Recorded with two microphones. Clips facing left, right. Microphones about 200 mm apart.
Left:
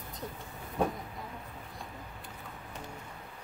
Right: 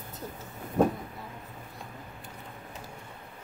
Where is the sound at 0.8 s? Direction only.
45° right (ahead or behind).